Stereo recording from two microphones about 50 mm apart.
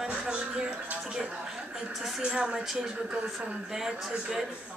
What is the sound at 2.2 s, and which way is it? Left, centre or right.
Speech, centre.